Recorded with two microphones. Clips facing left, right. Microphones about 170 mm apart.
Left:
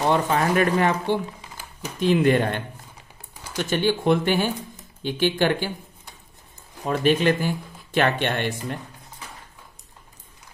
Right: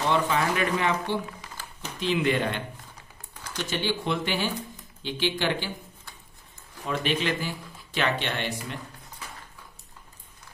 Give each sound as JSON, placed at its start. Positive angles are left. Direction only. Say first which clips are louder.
{"t": 0.1, "sound": "speech", "louder": "left 3 dB", "side_deg": 50}
{"t": 3.7, "sound": "speech", "louder": "left 8 dB", "side_deg": 50}
{"t": 6.8, "sound": "speech", "louder": "left 7 dB", "side_deg": 45}